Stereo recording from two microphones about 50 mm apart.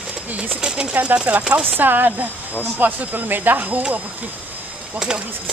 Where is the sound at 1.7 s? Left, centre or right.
Right.